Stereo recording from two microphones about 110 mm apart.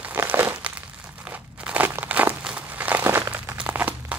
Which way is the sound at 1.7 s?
15° right (ahead or behind).